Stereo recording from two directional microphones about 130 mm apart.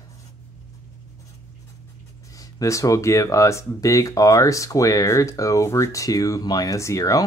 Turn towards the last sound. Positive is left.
turn(degrees=25)  # may be behind; listen again after turning